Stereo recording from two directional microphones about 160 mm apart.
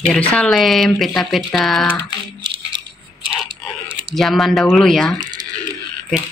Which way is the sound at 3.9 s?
30° right (ahead or behind).